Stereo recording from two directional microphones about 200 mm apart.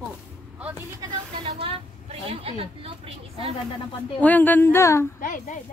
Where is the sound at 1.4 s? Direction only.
30° right (ahead or behind).